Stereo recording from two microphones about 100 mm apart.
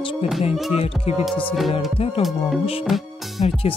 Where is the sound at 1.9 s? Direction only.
70° left (ahead or behind).